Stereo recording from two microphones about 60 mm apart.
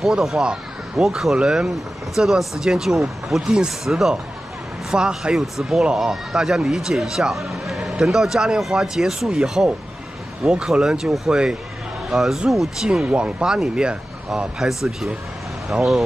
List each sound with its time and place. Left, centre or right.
0.0 s speech: centre
0.4 s a sound: centre
1.0 s speech: centre
1.3 s speech: centre
5.6 s speech: centre
13.0 s speech: centre
14.6 s speech: centre